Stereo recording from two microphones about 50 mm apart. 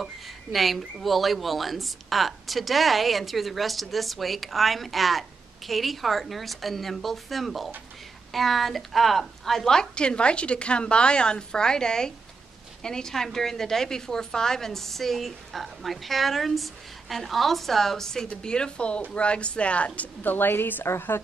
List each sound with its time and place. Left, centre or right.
0.0 s a woman's voice: centre; by 20.1 s left
20.2 s a woman's voice: left